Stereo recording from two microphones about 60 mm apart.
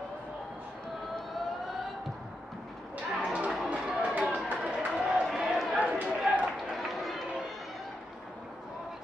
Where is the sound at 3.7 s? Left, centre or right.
Centre.